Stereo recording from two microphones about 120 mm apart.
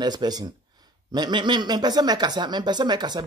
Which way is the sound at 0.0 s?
35° right (ahead or behind).